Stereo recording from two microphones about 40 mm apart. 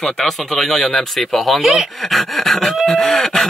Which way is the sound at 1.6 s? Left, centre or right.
Centre.